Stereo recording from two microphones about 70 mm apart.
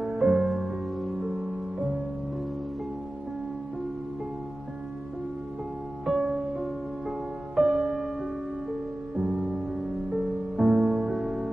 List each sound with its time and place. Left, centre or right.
0.0 s music: centre
6.0 s music: centre
10.1 s music: centre